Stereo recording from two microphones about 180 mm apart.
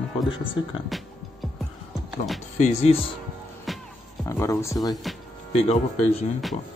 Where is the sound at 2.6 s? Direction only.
40° left (ahead or behind).